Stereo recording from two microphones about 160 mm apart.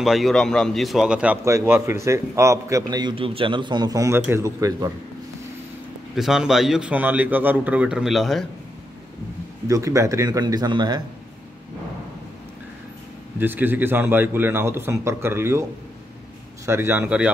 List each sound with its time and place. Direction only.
0.0 s a man's voice: centre (ahead or behind); by 4.9 s 20° right (ahead or behind)
6.1 s a man's voice: centre (ahead or behind)
9.7 s a man's voice: 20° right (ahead or behind)
13.4 s a man's voice: 10° right (ahead or behind)
16.6 s a man's voice: 15° right (ahead or behind)